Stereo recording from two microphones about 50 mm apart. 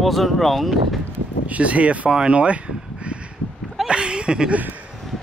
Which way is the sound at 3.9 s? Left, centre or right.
Right.